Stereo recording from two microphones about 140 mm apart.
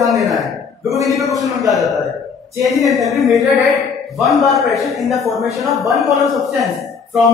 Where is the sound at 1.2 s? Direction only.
Centre (ahead or behind).